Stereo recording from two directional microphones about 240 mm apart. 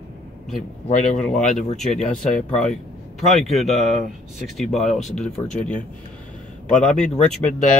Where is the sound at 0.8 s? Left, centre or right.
Left.